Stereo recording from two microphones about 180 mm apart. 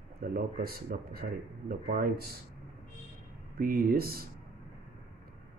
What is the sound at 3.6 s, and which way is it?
Speech, 55° right (ahead or behind).